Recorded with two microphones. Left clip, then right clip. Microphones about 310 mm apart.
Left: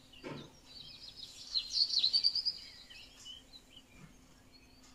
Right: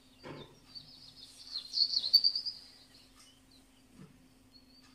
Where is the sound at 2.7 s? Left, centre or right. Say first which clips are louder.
Left 6 dB; left.